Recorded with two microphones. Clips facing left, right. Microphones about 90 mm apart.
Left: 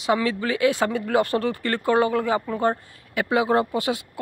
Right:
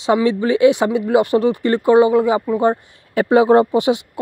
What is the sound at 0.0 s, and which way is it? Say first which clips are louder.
Speech: right 7 dB; 25° right (ahead or behind).